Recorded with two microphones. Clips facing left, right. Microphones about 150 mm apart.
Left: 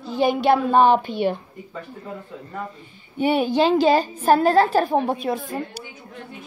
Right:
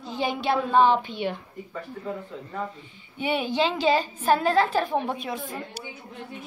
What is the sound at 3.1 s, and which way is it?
A woman's voice, 45° left (ahead or behind).